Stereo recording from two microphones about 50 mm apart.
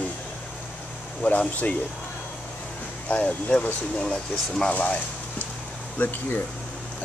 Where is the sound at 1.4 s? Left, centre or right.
Left.